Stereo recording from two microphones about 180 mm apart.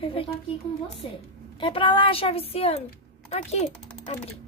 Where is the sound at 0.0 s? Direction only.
30° left (ahead or behind).